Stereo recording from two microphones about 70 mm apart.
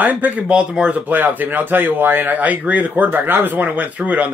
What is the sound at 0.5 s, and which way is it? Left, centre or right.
Speech, centre.